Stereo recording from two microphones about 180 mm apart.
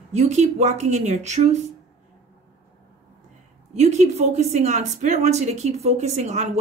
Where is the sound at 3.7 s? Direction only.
40° right (ahead or behind).